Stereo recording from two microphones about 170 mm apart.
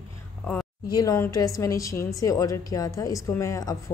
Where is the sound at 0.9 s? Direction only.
20° left (ahead or behind).